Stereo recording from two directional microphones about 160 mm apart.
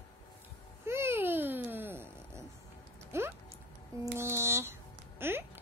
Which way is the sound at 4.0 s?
15° right (ahead or behind).